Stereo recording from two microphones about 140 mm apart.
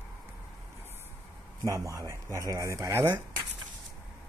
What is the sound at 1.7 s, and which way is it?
Speech, 20° right (ahead or behind).